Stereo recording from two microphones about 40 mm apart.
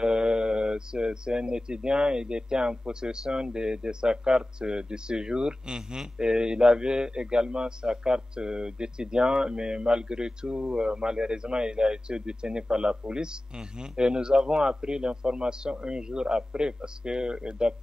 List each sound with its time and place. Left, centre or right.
0.0 s speech: right